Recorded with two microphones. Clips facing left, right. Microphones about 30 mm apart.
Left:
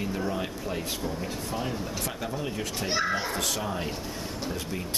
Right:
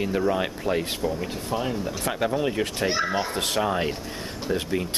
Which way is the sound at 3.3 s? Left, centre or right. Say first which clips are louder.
Right 6 dB; right.